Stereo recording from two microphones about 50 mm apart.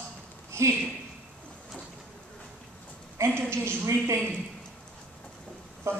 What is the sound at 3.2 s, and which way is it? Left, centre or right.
A woman's voice, right.